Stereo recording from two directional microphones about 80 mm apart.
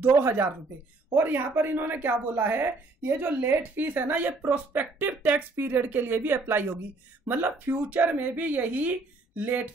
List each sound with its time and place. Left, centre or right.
0.1 s a woman's voice: right